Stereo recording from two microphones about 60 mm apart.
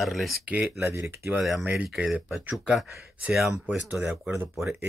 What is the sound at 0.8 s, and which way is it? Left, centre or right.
Speech, right.